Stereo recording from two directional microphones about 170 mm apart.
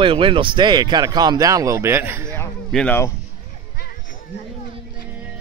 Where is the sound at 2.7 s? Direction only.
10° left (ahead or behind).